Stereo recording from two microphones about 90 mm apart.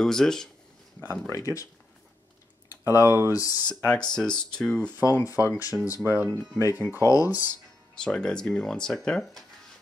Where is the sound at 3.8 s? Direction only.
10° left (ahead or behind).